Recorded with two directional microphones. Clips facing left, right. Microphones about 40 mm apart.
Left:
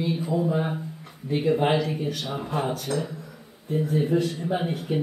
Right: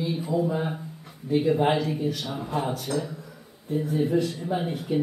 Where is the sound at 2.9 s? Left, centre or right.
Left.